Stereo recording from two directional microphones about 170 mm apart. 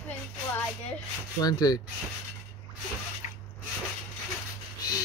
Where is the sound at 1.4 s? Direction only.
25° left (ahead or behind).